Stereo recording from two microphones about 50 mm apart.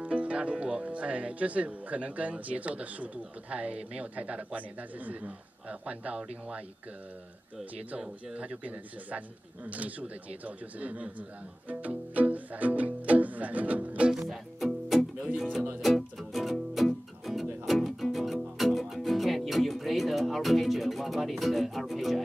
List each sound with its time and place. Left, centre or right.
0.0 s music: right
0.8 s speech: right
8.0 s speech: right
14.2 s music: centre